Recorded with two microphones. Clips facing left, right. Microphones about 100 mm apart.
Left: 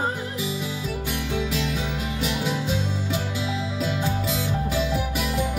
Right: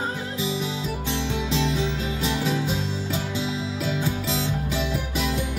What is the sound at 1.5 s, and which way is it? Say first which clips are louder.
Music: right 3 dB; 25° right (ahead or behind).